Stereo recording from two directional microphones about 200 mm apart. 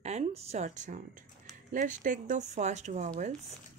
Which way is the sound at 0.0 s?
35° right (ahead or behind).